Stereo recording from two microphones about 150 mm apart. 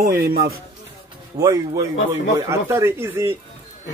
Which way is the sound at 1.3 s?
25° right (ahead or behind).